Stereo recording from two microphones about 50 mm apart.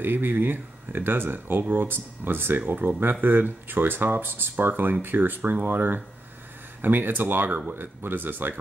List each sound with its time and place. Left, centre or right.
0.0 s speech: right